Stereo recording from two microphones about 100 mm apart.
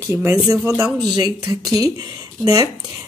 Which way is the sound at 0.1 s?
25° right (ahead or behind).